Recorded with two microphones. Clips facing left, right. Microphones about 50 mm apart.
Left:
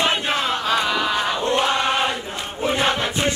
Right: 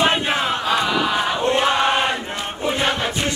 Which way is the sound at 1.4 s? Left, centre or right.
Right.